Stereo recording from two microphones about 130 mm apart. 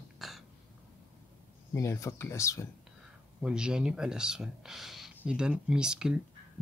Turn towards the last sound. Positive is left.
turn(degrees=-5)  # may be behind; listen again after turning